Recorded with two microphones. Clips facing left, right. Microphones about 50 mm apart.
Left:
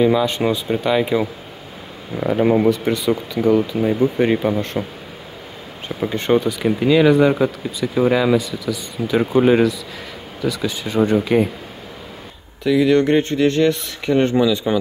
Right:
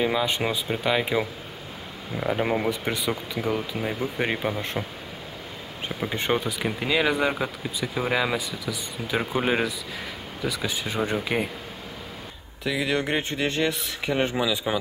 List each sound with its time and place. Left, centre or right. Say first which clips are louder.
0.0 s speech: left 8 dB; centre
5.9 s a sound: left 7 dB; centre
6.3 s speech: left 13 dB; centre
8.4 s speech: left 8 dB; centre
12.6 s speech: left 11 dB; centre